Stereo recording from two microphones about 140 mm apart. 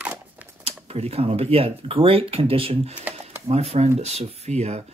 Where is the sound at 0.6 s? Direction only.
45° right (ahead or behind).